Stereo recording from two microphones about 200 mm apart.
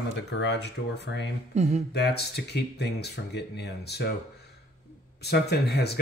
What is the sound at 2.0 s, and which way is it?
Speech, 55° left (ahead or behind).